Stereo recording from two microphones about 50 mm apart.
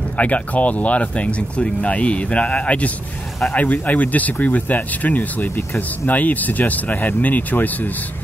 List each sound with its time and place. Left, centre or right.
0.2 s speech: left